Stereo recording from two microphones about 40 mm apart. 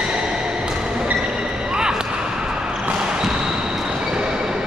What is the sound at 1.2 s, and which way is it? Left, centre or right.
Basketball bounce, centre.